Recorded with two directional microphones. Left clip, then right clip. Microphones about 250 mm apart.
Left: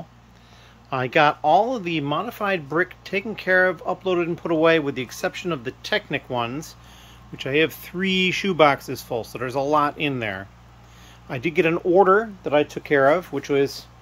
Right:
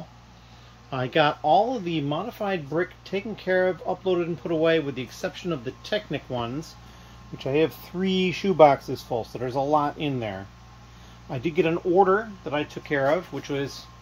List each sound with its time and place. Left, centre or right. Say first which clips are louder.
0.8 s speech: left 4 dB; centre